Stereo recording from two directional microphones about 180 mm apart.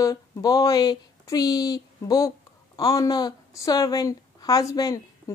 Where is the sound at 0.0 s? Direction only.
20° left (ahead or behind).